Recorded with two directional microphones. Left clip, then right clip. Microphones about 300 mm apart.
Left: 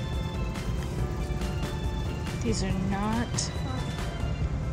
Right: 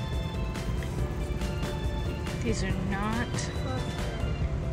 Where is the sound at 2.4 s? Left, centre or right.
Centre.